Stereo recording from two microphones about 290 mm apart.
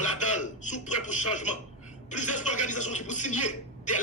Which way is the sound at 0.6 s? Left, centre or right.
Left.